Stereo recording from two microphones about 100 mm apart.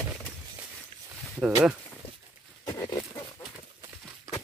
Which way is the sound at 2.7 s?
30° left (ahead or behind).